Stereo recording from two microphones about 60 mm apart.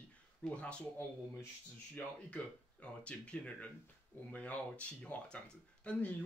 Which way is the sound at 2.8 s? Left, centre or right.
Centre.